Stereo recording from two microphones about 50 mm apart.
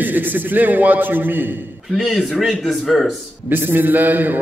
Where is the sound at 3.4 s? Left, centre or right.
Right.